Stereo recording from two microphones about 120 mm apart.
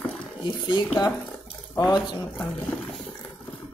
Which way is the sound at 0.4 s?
40° left (ahead or behind).